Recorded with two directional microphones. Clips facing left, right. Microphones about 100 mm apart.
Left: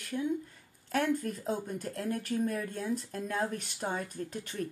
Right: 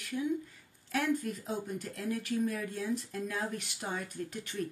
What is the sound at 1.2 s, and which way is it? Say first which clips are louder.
Speech: left 2 dB; 45° left (ahead or behind).